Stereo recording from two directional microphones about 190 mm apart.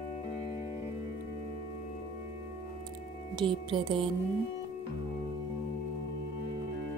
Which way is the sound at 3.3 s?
25° right (ahead or behind).